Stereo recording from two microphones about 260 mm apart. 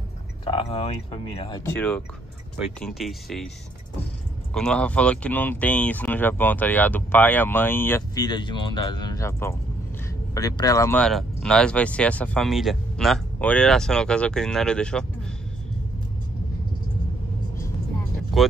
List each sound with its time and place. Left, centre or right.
0.5 s speech: left; by 3.4 s centre
4.6 s speech: centre
18.4 s speech: centre